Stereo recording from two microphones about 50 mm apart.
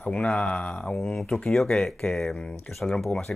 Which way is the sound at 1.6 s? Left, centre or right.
Centre.